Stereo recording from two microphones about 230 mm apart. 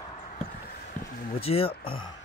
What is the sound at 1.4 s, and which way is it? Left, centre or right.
Speech, left.